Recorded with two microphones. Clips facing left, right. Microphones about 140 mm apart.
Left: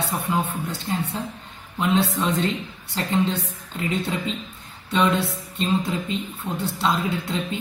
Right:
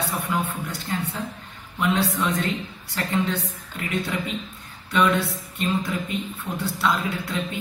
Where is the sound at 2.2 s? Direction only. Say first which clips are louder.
Left 2 dB; 25° left (ahead or behind).